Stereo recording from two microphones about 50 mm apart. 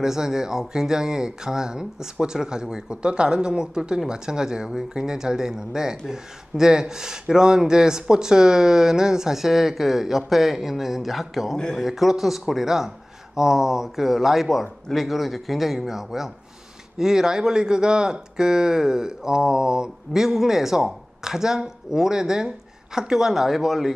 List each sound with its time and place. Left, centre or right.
0.0 s a man's voice: centre